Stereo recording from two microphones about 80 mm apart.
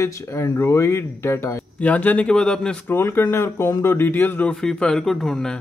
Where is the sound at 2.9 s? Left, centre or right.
Left.